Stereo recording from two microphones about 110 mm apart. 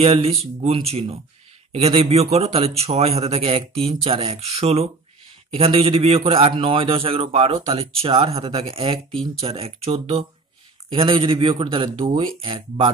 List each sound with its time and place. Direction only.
0.0 s a man's voice: 65° right (ahead or behind)
10.9 s speech: 55° right (ahead or behind)